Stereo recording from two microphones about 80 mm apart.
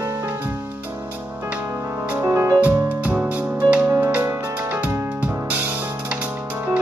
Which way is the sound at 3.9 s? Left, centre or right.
Right.